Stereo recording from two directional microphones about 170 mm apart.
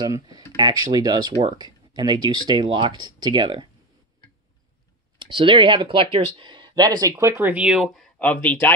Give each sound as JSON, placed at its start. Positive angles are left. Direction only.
{"t": 0.0, "sound": "speech", "side_deg": -20}
{"t": 1.6, "sound": "a sound", "side_deg": -25}
{"t": 2.2, "sound": "speech", "side_deg": -25}
{"t": 5.2, "sound": "speech", "side_deg": -30}